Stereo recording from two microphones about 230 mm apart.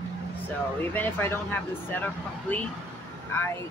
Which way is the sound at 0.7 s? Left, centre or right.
Centre.